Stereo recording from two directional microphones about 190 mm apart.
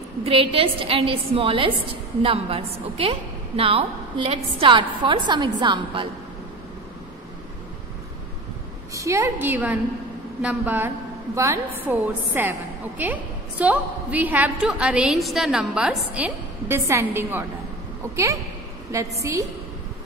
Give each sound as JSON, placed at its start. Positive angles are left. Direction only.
{"t": 0.2, "sound": "a woman's voice", "side_deg": -30}
{"t": 8.9, "sound": "a woman's voice", "side_deg": -15}